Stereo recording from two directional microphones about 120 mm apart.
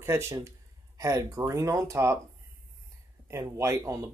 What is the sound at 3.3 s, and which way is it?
Speech, 25° right (ahead or behind).